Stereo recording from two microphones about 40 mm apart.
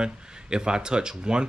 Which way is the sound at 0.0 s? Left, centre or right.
Right.